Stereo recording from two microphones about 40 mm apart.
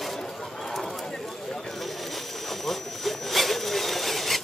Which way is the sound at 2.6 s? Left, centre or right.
Centre.